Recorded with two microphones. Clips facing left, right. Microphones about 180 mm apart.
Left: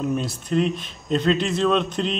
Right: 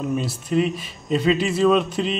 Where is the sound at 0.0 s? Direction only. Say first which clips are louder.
Even; centre (ahead or behind).